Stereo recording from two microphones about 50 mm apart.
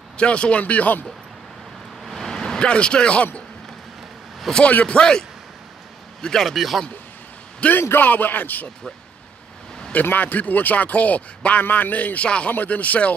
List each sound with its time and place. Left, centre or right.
0.2 s a man's voice: left
2.0 s vehicle: centre
2.7 s a man's voice: centre
4.6 s a man's voice: left
6.2 s a man's voice: centre
7.9 s speech: left
10.0 s speech: left